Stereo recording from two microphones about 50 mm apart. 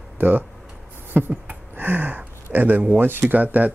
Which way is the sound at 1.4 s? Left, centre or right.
Right.